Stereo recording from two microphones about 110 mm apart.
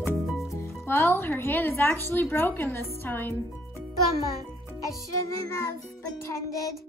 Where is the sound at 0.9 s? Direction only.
20° left (ahead or behind).